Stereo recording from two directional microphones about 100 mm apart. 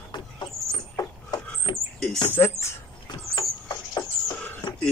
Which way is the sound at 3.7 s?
35° left (ahead or behind).